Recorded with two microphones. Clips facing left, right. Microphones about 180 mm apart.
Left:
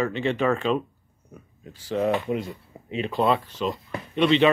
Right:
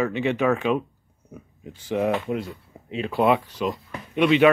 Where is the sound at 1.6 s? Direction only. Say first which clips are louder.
Right 1 dB; 15° right (ahead or behind).